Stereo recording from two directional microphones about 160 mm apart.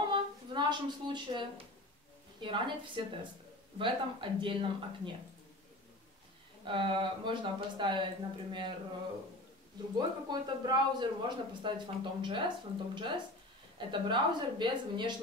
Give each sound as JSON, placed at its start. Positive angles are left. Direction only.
{"t": 0.1, "sound": "speech", "side_deg": -30}
{"t": 6.6, "sound": "speech", "side_deg": -30}
{"t": 9.9, "sound": "a woman's voice", "side_deg": -25}